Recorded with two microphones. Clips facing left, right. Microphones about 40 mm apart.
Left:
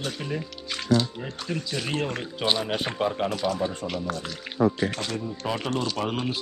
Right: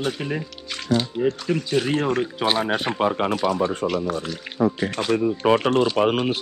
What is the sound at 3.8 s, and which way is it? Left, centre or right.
Speech, centre.